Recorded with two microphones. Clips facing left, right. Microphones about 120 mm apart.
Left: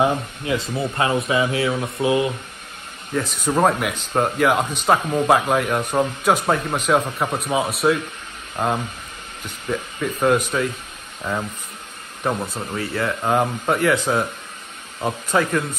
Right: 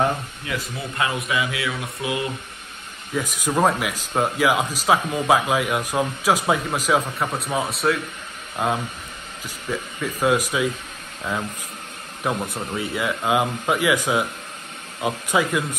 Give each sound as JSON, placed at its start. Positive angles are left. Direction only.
{"t": 0.5, "sound": "speech", "side_deg": 30}
{"t": 3.2, "sound": "speech", "side_deg": -10}
{"t": 3.5, "sound": "speech", "side_deg": 0}
{"t": 12.2, "sound": "speech", "side_deg": 0}